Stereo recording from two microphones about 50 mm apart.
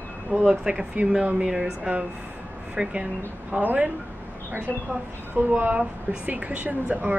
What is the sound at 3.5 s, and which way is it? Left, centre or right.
Speech, right.